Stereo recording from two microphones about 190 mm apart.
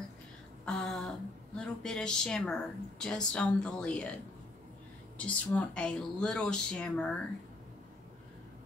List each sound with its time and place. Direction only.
0.7 s speech: centre (ahead or behind)